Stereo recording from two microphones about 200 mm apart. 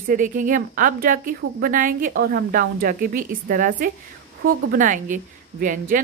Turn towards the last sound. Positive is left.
turn(degrees=-40)  # may be behind; listen again after turning